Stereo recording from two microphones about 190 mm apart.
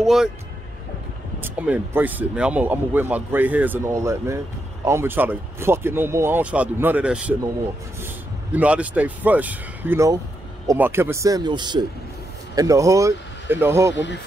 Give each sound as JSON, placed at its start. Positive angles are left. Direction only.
{"t": 0.0, "sound": "speech", "side_deg": 0}
{"t": 1.4, "sound": "speech", "side_deg": -10}
{"t": 8.5, "sound": "speech", "side_deg": -5}
{"t": 13.9, "sound": "speech", "side_deg": 70}